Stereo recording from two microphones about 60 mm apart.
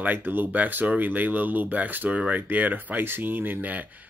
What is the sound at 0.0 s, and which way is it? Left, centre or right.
Speech, right.